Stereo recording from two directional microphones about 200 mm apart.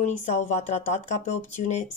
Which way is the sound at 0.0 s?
35° left (ahead or behind).